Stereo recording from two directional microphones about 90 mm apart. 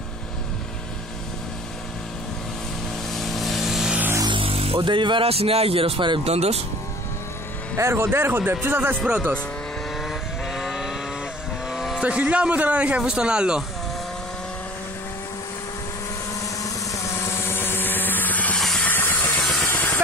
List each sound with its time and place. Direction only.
3.1 s vehicle: centre (ahead or behind)
4.3 s speech: 90° right; by 6.2 s 70° right (ahead or behind)
7.7 s speech: 30° right (ahead or behind)
9.0 s a man's voice: 10° right (ahead or behind)
9.9 s vehicle: centre (ahead or behind)
12.0 s a man's voice: 15° right (ahead or behind)
16.4 s vehicle: 40° left (ahead or behind); by 18.6 s 15° left (ahead or behind)
18.6 s vehicle: 5° left (ahead or behind)
18.9 s music: 20° left (ahead or behind)
19.6 s vehicle: 15° left (ahead or behind)